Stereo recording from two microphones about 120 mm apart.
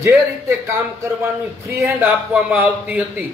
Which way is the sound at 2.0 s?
15° right (ahead or behind).